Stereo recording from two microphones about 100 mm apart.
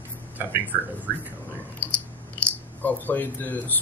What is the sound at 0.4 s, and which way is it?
Speech, 20° right (ahead or behind).